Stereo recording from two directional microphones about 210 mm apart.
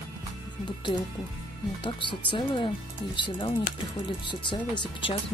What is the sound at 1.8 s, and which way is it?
Speech, 25° left (ahead or behind).